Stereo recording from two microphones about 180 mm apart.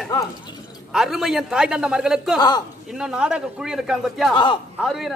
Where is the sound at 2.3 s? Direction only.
25° left (ahead or behind).